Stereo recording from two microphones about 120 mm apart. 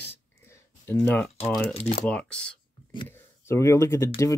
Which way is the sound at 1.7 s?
60° left (ahead or behind).